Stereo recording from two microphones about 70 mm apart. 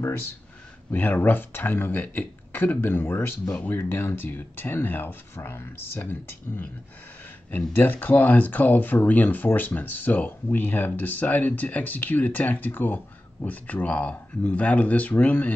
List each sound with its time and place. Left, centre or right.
0.9 s speech: left
3.4 s speech: centre
3.7 s speech: left